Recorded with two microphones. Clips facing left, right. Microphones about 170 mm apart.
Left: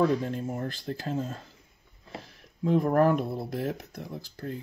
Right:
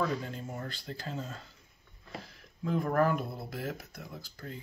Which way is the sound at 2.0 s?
25° left (ahead or behind).